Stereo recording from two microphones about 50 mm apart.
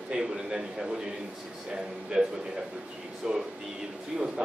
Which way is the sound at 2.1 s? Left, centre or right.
Centre.